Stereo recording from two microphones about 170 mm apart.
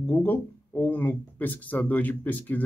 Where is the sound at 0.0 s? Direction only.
10° left (ahead or behind).